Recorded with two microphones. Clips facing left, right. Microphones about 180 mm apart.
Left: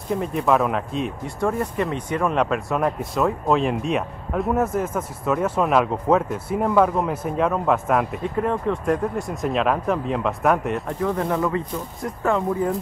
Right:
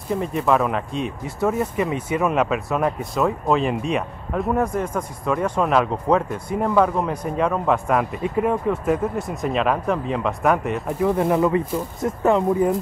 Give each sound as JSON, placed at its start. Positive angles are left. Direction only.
{"t": 0.1, "sound": "speech", "side_deg": 0}
{"t": 8.2, "sound": "speech", "side_deg": -10}
{"t": 11.1, "sound": "speech", "side_deg": -20}